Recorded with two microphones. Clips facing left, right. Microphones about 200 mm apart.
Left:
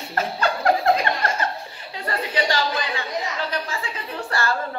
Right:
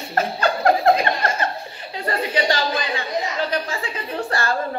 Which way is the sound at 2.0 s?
20° right (ahead or behind).